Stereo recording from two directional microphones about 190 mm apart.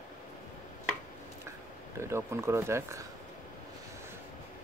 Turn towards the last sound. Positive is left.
turn(degrees=-15)  # may be behind; listen again after turning